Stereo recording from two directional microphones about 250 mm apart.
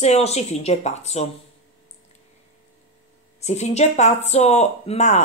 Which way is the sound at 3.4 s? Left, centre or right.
Left.